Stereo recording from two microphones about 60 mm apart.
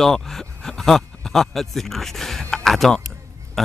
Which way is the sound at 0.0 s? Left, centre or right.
Centre.